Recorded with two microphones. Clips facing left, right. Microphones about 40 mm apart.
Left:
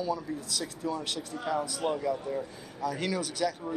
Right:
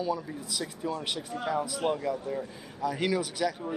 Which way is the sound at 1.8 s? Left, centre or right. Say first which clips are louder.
Right 1 dB; right.